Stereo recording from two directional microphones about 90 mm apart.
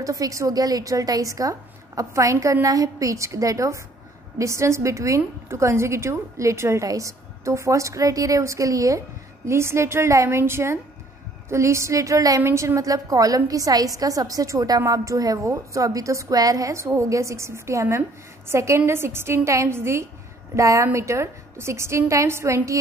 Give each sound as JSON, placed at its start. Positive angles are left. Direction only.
{"t": 0.0, "sound": "a woman's voice", "side_deg": -40}